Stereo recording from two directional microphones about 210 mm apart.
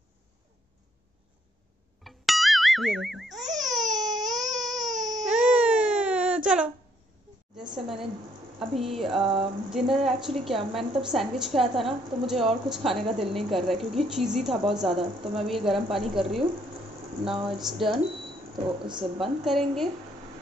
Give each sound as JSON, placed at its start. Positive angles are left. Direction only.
{"t": 2.0, "sound": "boing", "side_deg": 0}
{"t": 4.3, "sound": "baby cry", "side_deg": 0}
{"t": 4.9, "sound": "baby cry", "side_deg": -20}
{"t": 5.2, "sound": "baby cry", "side_deg": -5}
{"t": 7.7, "sound": "a woman's voice", "side_deg": 0}
{"t": 9.2, "sound": "a sound", "side_deg": -25}
{"t": 9.7, "sound": "a woman's voice", "side_deg": 0}
{"t": 17.5, "sound": "a woman's voice", "side_deg": 0}
{"t": 19.4, "sound": "a woman's voice", "side_deg": 0}